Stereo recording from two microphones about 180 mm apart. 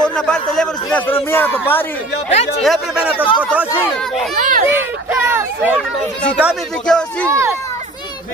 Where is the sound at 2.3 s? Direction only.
35° left (ahead or behind).